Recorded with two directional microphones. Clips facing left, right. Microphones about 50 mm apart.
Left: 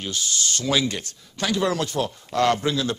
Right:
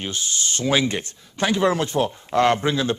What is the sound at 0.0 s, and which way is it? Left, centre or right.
Speech, right.